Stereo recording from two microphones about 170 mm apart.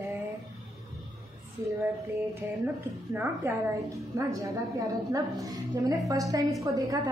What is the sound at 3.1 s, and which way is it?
A woman's voice, 15° right (ahead or behind).